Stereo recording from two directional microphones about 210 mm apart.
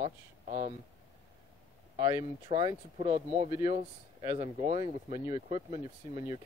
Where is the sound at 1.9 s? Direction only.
20° right (ahead or behind).